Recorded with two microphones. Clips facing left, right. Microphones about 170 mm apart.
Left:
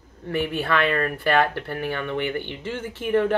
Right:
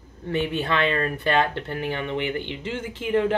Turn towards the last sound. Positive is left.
turn(degrees=-15)  # may be behind; listen again after turning